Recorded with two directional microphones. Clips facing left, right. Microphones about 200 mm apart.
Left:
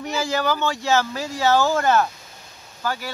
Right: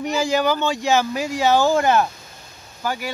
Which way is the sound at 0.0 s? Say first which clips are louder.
Right 4 dB; 15° right (ahead or behind).